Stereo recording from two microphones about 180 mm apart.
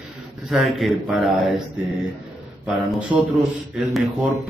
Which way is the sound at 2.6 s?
5° right (ahead or behind).